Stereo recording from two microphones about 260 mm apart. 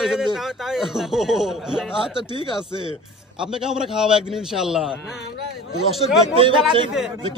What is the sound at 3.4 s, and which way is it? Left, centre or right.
A man's voice, centre.